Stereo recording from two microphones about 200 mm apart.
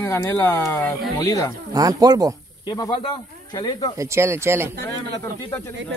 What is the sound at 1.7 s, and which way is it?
Speech, 20° right (ahead or behind).